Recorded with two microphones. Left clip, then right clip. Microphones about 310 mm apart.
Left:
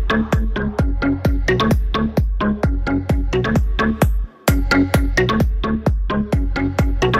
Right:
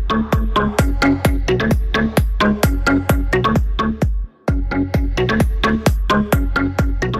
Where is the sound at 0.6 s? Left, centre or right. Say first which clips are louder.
Right 5 dB; right.